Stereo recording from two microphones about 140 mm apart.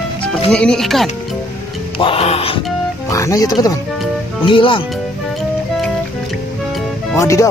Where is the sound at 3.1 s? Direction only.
25° left (ahead or behind).